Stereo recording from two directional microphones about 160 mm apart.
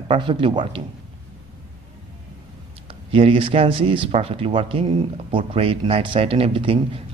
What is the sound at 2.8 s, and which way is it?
Speech, 35° right (ahead or behind).